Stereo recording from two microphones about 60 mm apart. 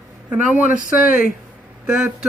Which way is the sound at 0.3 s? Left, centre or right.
Centre.